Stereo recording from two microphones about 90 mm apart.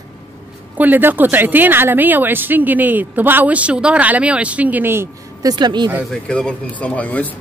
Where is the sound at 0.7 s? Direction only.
20° right (ahead or behind).